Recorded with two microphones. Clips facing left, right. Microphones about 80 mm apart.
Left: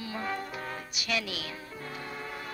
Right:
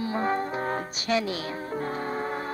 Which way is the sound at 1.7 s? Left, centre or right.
Right.